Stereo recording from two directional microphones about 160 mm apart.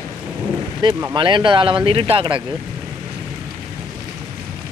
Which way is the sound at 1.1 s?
30° right (ahead or behind).